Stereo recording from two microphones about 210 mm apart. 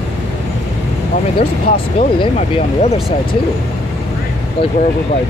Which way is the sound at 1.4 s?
30° left (ahead or behind).